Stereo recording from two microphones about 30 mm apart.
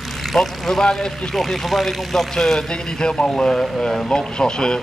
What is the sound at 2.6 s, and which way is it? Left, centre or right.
A man's voice, left.